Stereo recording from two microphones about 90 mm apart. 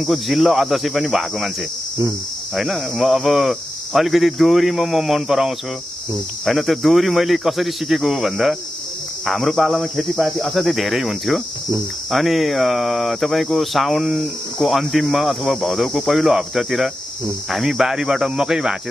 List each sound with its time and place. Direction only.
0.0 s speech: centre (ahead or behind)
2.5 s speech: centre (ahead or behind)